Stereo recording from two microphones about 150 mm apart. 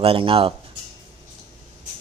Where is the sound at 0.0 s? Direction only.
40° right (ahead or behind).